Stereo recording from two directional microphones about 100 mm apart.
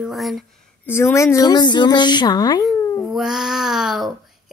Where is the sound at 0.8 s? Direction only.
25° left (ahead or behind); by 2.6 s 40° left (ahead or behind).